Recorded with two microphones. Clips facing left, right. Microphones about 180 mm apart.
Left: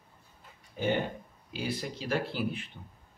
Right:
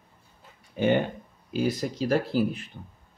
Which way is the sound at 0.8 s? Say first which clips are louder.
Right 7 dB; 65° right (ahead or behind).